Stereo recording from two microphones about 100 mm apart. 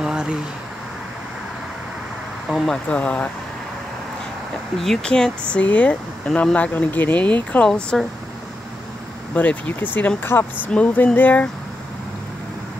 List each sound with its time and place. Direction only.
0.0 s a sound: 10° right (ahead or behind)
2.5 s speech: 5° left (ahead or behind)
4.7 s speech: 5° left (ahead or behind)
9.3 s speech: 15° left (ahead or behind)